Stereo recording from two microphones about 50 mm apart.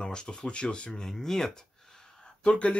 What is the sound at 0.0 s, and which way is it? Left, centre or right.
Speech, centre.